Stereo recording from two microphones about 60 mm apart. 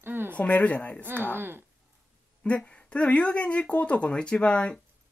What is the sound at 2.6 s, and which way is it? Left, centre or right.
Speech, centre.